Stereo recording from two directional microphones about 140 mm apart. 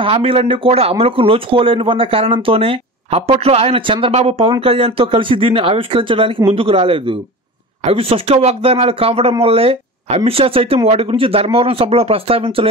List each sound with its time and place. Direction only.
0.0 s speech: 40° right (ahead or behind)